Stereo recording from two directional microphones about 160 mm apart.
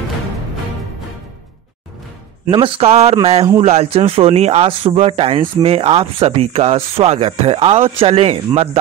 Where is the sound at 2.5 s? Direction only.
35° right (ahead or behind).